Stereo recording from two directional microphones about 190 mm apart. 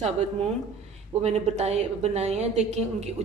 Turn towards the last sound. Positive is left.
turn(degrees=-35)  # may be behind; listen again after turning